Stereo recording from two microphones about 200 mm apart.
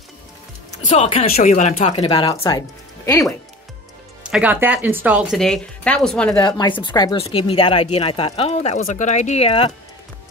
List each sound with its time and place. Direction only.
0.9 s speech: 30° left (ahead or behind)
4.2 s speech: 5° right (ahead or behind)
6.4 s speech: 20° left (ahead or behind)